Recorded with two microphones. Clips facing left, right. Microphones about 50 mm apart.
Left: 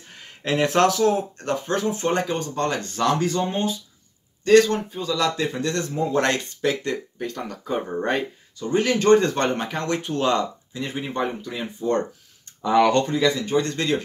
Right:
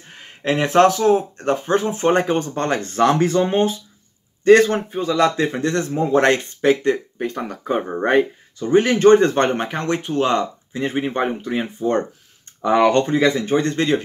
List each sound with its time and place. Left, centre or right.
0.1 s speech: centre
7.6 s speech: right
10.7 s speech: right
13.0 s speech: right